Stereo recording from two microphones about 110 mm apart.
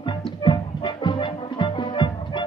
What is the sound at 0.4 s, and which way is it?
Music, 45° left (ahead or behind).